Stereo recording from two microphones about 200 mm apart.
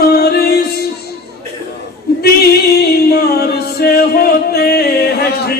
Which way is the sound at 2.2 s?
50° left (ahead or behind).